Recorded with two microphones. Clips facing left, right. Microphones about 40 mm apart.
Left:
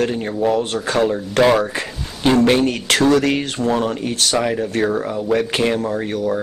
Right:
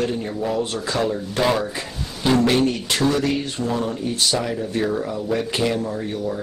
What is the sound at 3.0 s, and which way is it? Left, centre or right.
Speech, left.